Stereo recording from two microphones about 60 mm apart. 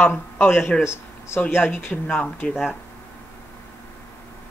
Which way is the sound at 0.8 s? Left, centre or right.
Left.